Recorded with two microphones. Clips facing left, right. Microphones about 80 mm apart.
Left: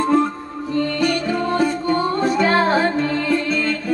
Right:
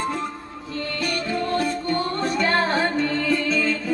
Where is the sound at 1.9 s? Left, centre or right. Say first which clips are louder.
Left 5 dB; centre.